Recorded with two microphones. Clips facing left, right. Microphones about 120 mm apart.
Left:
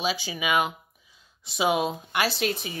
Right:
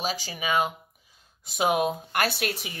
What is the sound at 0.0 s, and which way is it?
Speech, 40° right (ahead or behind).